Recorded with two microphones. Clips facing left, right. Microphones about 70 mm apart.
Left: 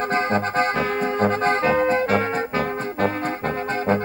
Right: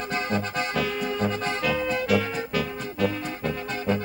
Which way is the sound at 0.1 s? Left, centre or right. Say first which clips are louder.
Left 4 dB; left.